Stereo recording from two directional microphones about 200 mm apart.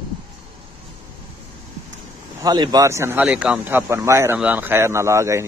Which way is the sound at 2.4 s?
20° right (ahead or behind).